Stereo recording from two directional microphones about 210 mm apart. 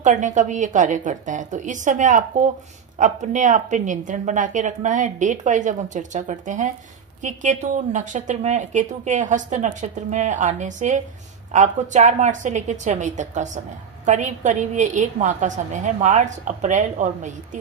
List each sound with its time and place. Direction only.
0.0 s a woman's voice: 35° right (ahead or behind)